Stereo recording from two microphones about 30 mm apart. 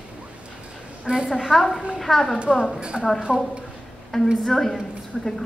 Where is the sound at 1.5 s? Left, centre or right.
Centre.